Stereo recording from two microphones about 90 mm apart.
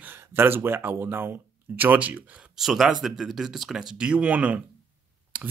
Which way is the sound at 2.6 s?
5° right (ahead or behind).